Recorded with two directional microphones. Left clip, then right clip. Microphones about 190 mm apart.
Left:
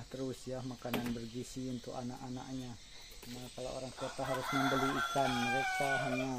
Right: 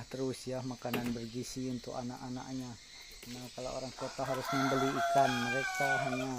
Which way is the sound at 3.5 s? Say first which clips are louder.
Right 2 dB; 25° right (ahead or behind).